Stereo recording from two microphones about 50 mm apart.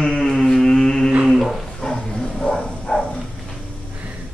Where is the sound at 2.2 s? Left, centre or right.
Centre.